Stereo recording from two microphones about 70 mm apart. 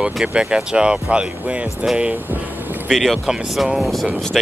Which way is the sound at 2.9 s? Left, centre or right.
Centre.